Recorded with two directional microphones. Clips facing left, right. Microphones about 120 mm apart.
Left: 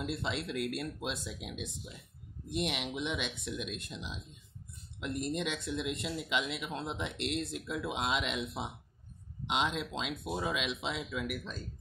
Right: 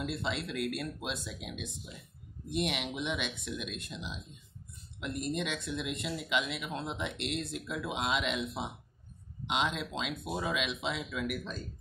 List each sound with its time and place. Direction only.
0.0 s speech: 30° left (ahead or behind)
2.5 s speech: 30° left (ahead or behind)
5.0 s speech: 30° left (ahead or behind)
9.5 s speech: 30° left (ahead or behind)